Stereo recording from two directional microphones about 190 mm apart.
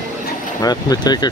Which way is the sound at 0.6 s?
20° left (ahead or behind).